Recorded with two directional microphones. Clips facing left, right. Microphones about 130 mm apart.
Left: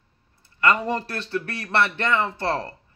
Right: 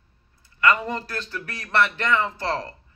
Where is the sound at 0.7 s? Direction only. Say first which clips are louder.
Even; 30° left (ahead or behind).